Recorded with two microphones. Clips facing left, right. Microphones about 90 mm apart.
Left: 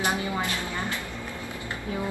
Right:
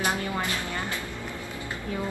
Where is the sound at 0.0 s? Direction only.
20° left (ahead or behind).